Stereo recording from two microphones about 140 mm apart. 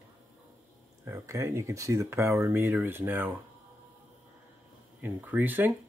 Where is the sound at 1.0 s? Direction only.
20° right (ahead or behind).